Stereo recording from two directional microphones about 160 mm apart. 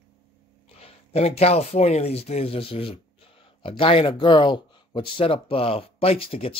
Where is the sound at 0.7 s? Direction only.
40° left (ahead or behind).